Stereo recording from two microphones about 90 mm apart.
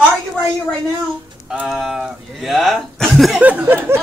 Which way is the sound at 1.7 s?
5° right (ahead or behind).